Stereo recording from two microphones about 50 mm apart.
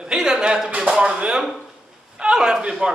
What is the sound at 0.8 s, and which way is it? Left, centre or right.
Speech, centre.